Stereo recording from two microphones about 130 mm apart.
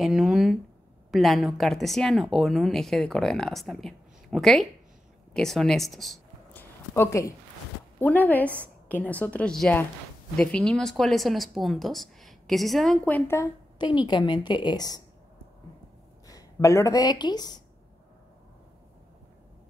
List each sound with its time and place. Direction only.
0.0 s speech: 5° right (ahead or behind)
6.5 s a sound: 20° left (ahead or behind)
8.0 s a woman's voice: 15° left (ahead or behind)
13.7 s a woman's voice: 35° left (ahead or behind)
16.3 s speech: 25° left (ahead or behind)